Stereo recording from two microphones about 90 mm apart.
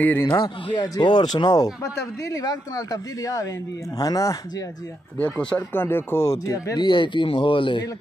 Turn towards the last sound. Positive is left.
turn(degrees=70)  # may be behind; listen again after turning